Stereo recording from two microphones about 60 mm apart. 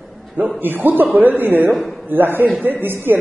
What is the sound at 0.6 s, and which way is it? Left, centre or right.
A man's voice, right.